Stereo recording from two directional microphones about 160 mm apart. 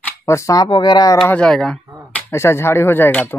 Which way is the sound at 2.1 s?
15° left (ahead or behind).